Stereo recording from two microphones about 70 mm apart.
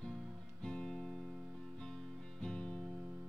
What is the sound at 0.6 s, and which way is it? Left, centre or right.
Music, centre.